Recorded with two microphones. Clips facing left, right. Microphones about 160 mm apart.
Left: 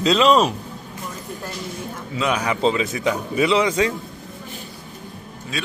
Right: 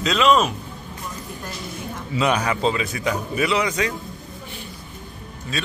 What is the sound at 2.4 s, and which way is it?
A man's voice, 20° left (ahead or behind).